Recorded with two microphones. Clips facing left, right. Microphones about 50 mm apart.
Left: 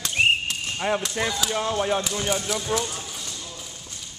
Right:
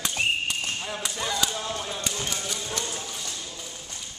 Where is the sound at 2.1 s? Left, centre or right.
Centre.